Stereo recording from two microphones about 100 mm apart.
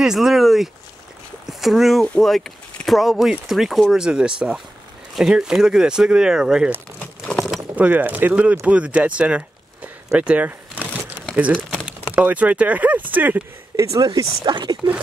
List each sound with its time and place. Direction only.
0.0 s speech: 5° right (ahead or behind)
7.0 s a sound: 10° left (ahead or behind)
7.7 s speech: 15° right (ahead or behind)
12.2 s speech: 15° right (ahead or behind)
13.7 s speech: 30° right (ahead or behind)
14.0 s speech: 50° right (ahead or behind)